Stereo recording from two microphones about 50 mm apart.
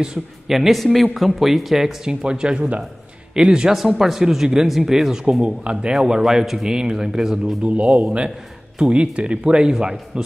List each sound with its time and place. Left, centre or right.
0.5 s speech: centre
2.2 s speech: centre
5.4 s speech: right
5.9 s speech: centre
7.6 s speech: right